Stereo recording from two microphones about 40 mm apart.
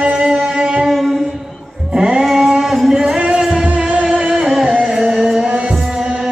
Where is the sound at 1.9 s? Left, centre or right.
Right.